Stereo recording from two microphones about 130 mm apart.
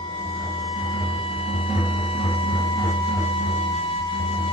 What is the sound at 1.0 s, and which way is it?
Music, 45° left (ahead or behind).